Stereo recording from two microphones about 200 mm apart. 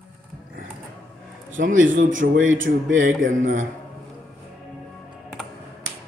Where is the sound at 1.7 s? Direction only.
75° right (ahead or behind).